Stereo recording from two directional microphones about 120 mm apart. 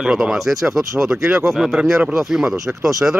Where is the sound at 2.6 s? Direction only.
25° right (ahead or behind).